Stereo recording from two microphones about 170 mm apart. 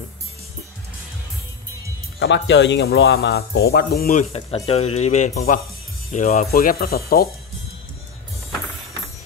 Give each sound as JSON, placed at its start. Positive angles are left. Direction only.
{"t": 2.1, "sound": "speech", "side_deg": 90}
{"t": 4.1, "sound": "speech", "side_deg": 40}